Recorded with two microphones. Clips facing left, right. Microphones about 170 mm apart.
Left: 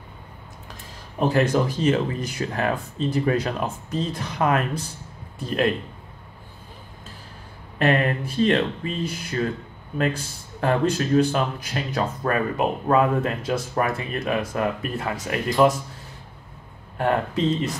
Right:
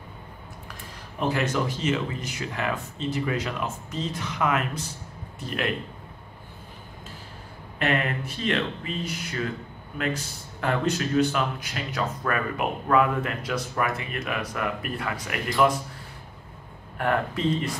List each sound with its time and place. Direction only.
1.3 s speech: 35° left (ahead or behind)
7.8 s speech: 35° left (ahead or behind)
10.6 s speech: 30° left (ahead or behind)
17.0 s speech: 25° left (ahead or behind)